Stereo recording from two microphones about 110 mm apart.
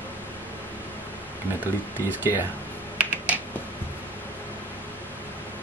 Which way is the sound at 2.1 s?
20° right (ahead or behind).